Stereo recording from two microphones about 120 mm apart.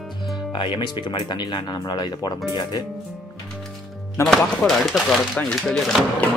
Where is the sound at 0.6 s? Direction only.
40° left (ahead or behind).